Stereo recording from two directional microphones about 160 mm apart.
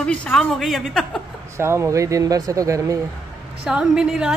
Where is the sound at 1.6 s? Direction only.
15° right (ahead or behind).